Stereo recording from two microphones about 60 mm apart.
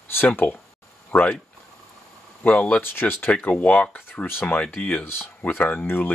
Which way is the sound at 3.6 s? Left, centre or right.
Left.